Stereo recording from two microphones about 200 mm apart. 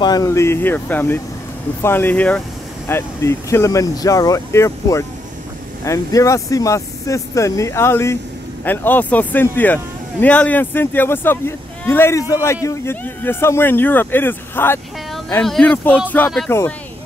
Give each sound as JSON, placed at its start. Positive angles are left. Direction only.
{"t": 0.0, "sound": "speech", "side_deg": 20}